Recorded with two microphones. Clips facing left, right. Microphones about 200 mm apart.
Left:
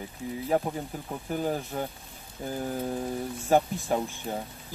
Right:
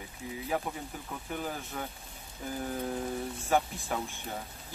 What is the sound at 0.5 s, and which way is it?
Speech, 35° left (ahead or behind).